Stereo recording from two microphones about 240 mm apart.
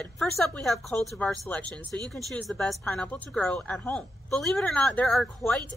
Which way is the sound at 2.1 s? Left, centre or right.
Centre.